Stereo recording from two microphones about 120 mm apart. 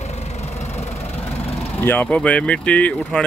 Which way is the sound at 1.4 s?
60° left (ahead or behind).